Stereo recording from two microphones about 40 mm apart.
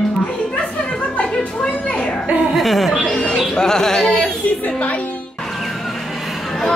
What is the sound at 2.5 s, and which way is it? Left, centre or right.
Chuckle, centre.